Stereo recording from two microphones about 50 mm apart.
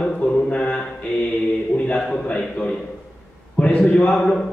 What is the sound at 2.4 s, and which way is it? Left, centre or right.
Mantra, left.